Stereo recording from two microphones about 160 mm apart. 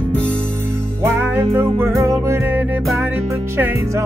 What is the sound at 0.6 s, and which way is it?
Music, 15° right (ahead or behind).